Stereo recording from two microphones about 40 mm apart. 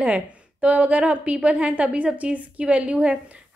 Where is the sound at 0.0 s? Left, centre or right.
Right.